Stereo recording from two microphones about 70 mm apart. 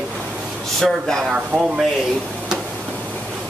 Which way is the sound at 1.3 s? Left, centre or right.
Centre.